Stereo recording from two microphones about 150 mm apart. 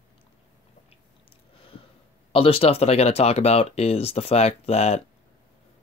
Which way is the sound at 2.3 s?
40° left (ahead or behind).